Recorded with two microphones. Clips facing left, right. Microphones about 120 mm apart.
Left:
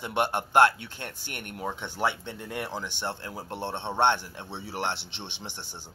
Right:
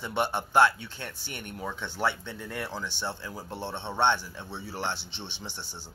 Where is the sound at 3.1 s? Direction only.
55° left (ahead or behind).